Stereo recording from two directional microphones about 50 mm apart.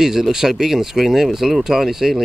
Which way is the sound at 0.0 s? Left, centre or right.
Centre.